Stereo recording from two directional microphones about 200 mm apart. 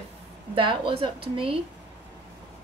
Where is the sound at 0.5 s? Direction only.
25° right (ahead or behind).